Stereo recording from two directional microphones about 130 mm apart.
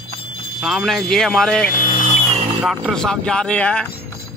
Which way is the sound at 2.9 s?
5° left (ahead or behind).